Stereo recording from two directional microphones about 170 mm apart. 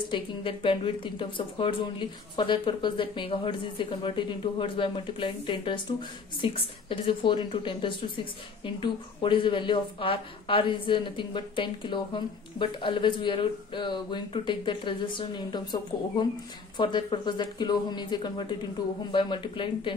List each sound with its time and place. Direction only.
0.1 s a woman's voice: 30° left (ahead or behind)